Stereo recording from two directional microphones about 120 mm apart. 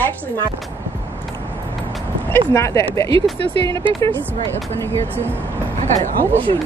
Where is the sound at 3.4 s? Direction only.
50° right (ahead or behind).